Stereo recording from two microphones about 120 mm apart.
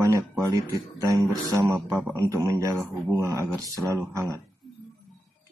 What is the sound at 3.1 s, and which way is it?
Speech, 25° right (ahead or behind).